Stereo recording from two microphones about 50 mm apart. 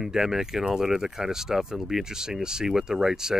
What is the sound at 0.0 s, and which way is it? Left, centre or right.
Speech, centre.